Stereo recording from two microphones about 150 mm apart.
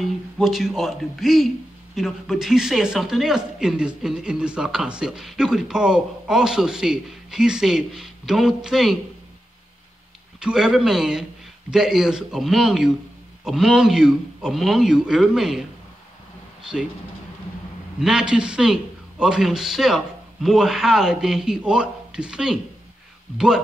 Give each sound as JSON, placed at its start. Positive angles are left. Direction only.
{"t": 0.0, "sound": "speech", "side_deg": 0}
{"t": 10.4, "sound": "speech", "side_deg": -5}
{"t": 18.0, "sound": "speech", "side_deg": -5}